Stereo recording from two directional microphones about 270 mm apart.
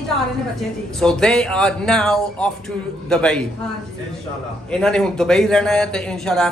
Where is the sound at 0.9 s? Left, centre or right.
Centre.